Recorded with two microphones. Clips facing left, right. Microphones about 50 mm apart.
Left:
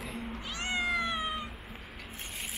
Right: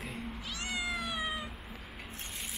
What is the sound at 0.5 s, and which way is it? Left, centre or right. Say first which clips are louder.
Cat: left 5 dB; left.